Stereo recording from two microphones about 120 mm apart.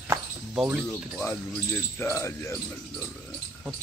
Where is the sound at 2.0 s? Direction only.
20° left (ahead or behind).